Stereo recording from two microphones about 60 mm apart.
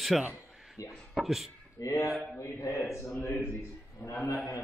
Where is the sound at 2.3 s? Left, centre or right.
Left.